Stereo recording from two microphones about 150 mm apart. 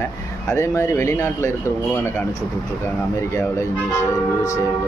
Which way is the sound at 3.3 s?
20° left (ahead or behind).